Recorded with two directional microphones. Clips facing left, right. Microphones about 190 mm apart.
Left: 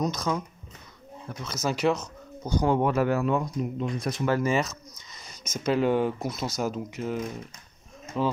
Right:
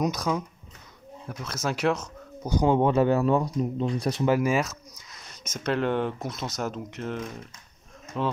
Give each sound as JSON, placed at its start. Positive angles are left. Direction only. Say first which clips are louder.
{"t": 0.0, "sound": "speech", "louder": "right 1 dB", "side_deg": -10}
{"t": 1.4, "sound": "speech", "louder": "left 1 dB", "side_deg": -5}
{"t": 2.4, "sound": "speech", "louder": "right 2 dB", "side_deg": -20}
{"t": 4.3, "sound": "speech", "louder": "right 1 dB", "side_deg": -10}